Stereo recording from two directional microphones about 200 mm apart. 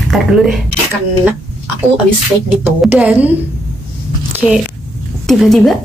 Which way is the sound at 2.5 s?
10° right (ahead or behind).